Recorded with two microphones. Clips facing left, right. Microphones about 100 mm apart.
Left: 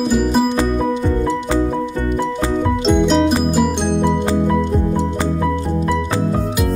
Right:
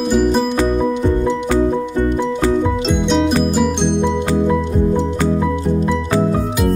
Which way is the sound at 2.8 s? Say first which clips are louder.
Left 5 dB; centre (ahead or behind).